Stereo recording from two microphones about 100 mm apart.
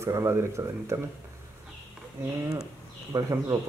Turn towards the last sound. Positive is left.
turn(degrees=-35)  # may be behind; listen again after turning